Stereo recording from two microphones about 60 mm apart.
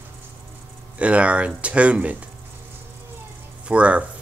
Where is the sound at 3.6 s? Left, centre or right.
Right.